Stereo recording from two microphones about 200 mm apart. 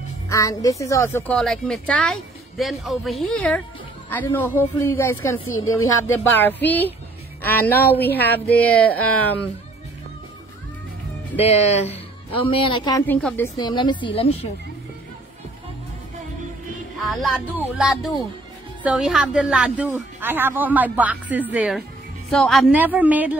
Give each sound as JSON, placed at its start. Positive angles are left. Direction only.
{"t": 0.3, "sound": "a woman's voice", "side_deg": 15}
{"t": 11.3, "sound": "speech", "side_deg": 30}
{"t": 13.0, "sound": "speech", "side_deg": 10}
{"t": 13.6, "sound": "speech", "side_deg": 20}
{"t": 17.1, "sound": "a woman's voice", "side_deg": 0}